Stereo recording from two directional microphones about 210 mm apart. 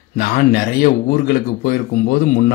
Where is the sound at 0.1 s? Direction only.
40° left (ahead or behind).